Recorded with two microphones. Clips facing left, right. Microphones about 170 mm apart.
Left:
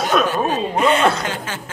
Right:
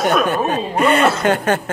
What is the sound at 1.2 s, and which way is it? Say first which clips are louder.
Speech: right 10 dB; 60° right (ahead or behind).